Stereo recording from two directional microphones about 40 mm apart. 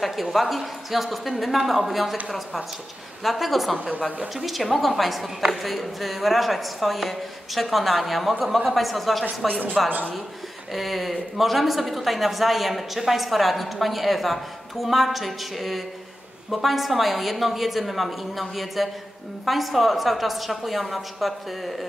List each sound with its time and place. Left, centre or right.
0.0 s speech: centre
9.8 s a man's voice: right
10.7 s speech: centre